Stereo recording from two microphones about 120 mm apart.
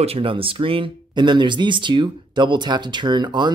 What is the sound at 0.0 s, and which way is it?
Speech, 50° right (ahead or behind).